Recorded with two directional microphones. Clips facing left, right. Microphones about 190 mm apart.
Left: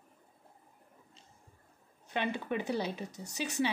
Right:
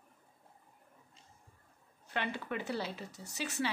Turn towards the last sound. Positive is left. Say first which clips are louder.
# left 4 dB
turn(degrees=15)  # may be behind; listen again after turning